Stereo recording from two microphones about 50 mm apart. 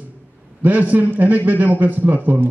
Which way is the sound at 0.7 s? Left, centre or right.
Right.